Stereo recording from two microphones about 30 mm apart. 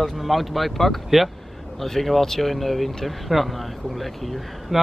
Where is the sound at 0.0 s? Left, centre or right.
Centre.